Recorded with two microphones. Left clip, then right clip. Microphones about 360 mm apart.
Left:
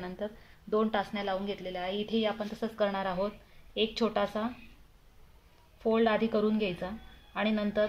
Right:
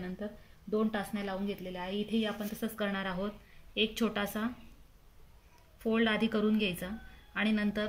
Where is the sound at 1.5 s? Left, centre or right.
Left.